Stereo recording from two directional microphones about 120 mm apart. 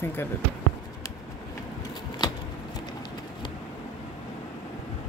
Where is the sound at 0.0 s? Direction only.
20° left (ahead or behind).